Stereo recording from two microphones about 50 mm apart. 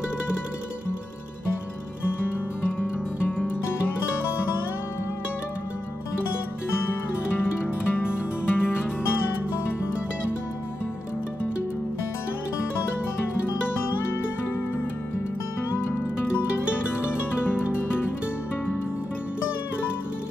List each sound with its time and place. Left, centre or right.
2.8 s music: left
7.9 s music: left